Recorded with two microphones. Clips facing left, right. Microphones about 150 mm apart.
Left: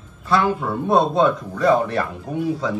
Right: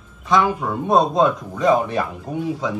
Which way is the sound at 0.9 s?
Centre (ahead or behind).